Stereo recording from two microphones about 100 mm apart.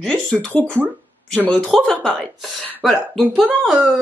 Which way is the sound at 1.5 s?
5° left (ahead or behind).